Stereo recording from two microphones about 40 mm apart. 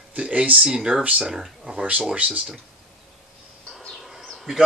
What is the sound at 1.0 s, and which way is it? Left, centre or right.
Speech, right.